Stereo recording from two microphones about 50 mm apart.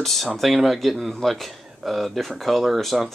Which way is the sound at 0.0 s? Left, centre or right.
Centre.